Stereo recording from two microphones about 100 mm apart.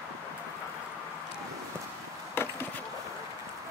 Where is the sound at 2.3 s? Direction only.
20° left (ahead or behind).